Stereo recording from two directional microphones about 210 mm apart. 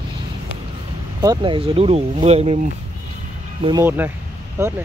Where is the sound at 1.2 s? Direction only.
20° right (ahead or behind).